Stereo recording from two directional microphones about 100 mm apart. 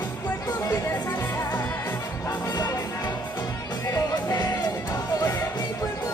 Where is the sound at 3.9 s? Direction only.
35° left (ahead or behind).